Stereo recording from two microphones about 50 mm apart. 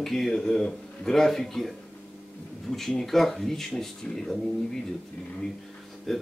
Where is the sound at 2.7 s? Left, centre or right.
Centre.